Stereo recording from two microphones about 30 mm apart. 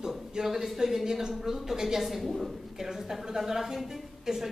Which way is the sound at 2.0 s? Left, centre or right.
Centre.